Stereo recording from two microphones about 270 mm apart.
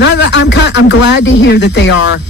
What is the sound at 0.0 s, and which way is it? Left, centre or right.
Speech, left.